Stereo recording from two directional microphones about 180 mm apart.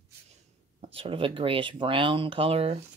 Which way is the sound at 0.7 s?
30° right (ahead or behind).